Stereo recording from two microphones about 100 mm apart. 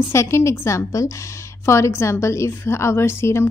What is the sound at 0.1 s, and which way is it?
A woman's voice, 30° left (ahead or behind).